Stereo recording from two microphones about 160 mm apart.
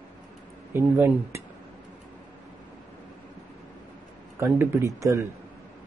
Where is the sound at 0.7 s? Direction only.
15° right (ahead or behind).